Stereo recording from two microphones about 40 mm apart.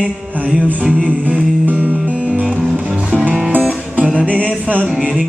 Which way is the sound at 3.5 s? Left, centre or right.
Right.